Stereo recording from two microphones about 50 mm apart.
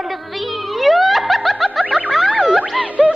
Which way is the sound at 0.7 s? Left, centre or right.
Centre.